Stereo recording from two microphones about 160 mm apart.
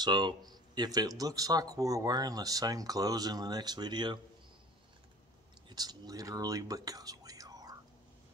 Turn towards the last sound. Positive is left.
turn(degrees=-25)  # may be behind; listen again after turning